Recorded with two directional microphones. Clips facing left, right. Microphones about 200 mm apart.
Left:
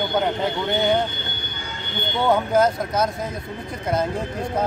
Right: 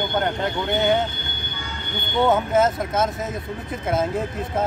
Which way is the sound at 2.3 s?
Centre (ahead or behind).